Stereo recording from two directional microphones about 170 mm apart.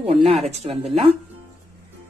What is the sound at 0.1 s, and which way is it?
Speech, 35° right (ahead or behind).